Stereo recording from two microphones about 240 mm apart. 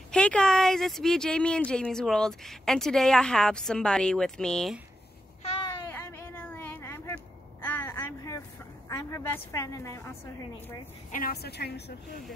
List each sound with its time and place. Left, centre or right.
0.1 s speech: centre
5.9 s a sound: centre
8.9 s a woman's voice: centre
11.1 s a woman's voice: left